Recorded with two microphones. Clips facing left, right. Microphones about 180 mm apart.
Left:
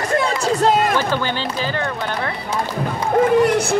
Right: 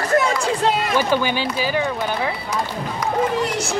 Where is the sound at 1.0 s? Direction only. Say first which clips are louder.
Right 2 dB; 15° right (ahead or behind).